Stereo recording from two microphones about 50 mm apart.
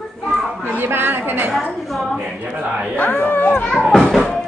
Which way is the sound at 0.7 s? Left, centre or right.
Right.